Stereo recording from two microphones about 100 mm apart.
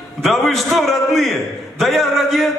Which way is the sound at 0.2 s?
5° left (ahead or behind).